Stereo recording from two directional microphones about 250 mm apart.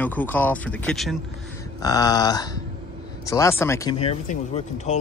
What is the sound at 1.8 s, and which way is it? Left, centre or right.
Speech, centre.